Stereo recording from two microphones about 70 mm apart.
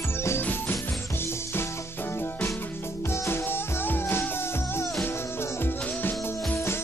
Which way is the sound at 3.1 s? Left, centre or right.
Left.